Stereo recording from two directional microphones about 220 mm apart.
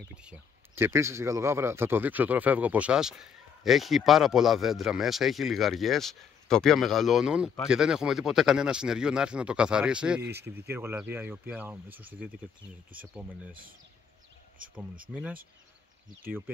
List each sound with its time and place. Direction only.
0.1 s speech: 5° right (ahead or behind)
13.5 s speech: 40° right (ahead or behind)